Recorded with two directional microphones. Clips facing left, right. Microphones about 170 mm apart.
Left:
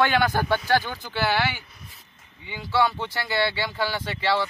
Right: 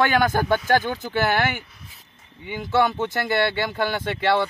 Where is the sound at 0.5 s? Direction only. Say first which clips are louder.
Right 3 dB; 50° right (ahead or behind).